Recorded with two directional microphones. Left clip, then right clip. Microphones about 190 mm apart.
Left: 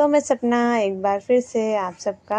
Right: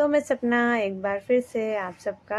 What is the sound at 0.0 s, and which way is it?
A woman's voice, 15° left (ahead or behind).